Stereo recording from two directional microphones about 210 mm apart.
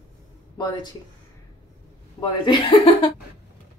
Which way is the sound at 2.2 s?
25° left (ahead or behind).